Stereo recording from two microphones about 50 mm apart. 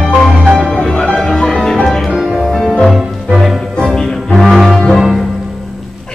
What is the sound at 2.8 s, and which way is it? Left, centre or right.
Music, centre.